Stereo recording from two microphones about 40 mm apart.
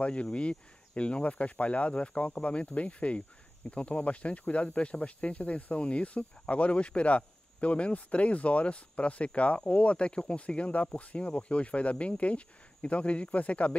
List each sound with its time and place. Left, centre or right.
0.0 s speech: left